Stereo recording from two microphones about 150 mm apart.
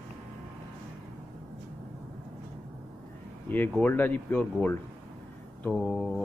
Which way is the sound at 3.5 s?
10° left (ahead or behind).